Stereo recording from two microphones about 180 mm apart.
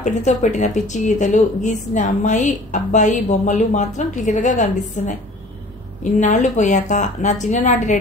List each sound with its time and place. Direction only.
0.0 s a woman's voice: 40° left (ahead or behind)
6.1 s a woman's voice: 40° left (ahead or behind)